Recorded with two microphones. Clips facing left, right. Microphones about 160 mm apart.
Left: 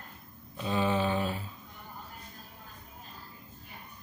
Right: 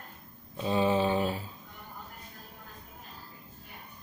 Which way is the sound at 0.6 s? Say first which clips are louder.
Right 3 dB; 30° right (ahead or behind).